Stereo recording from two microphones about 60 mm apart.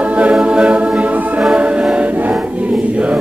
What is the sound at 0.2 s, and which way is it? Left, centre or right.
Choir, centre.